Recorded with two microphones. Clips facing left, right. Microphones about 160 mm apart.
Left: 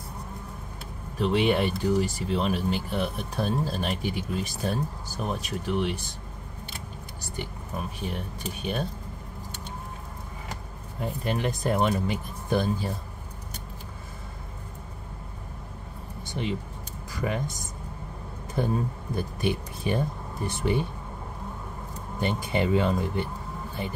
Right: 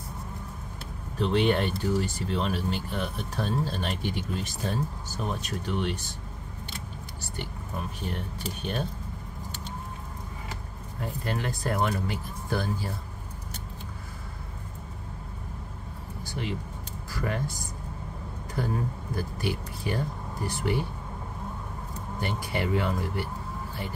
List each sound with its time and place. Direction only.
1.1 s speech: 10° left (ahead or behind)
7.3 s speech: 10° left (ahead or behind)
11.0 s speech: 20° left (ahead or behind)
16.2 s a sound: 20° left (ahead or behind)
17.2 s speech: 20° left (ahead or behind)
19.1 s speech: 20° left (ahead or behind)
22.2 s speech: 20° left (ahead or behind)